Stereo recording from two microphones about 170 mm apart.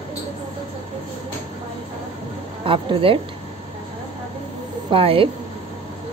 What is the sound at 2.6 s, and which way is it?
Speech, 30° right (ahead or behind).